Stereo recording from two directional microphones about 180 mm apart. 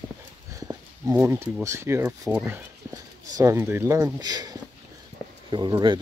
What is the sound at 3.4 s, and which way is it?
Speech, 15° right (ahead or behind).